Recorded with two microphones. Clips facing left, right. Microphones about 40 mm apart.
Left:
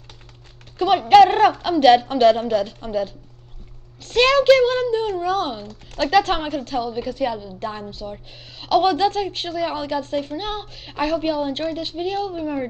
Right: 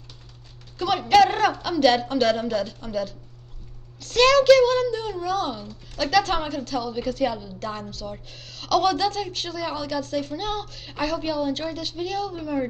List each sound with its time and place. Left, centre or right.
0.7 s a woman's voice: left
6.9 s a woman's voice: centre
7.5 s a woman's voice: left